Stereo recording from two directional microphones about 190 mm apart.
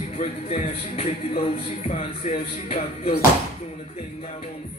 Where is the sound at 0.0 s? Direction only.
35° left (ahead or behind).